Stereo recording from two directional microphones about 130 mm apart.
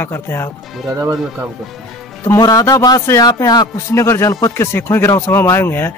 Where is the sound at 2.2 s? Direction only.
25° left (ahead or behind).